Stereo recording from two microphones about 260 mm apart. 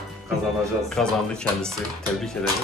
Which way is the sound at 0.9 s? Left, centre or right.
Centre.